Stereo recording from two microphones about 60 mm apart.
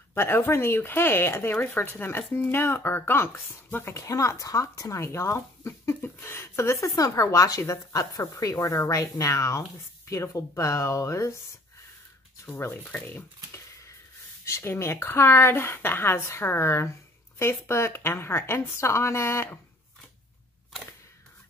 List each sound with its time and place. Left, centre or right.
0.1 s speech: left
3.9 s a woman's voice: left
7.0 s a woman's voice: left
12.4 s speech: left
14.4 s a woman's voice: left